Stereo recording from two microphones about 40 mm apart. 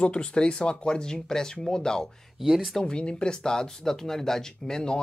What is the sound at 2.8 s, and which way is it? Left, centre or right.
Speech, left.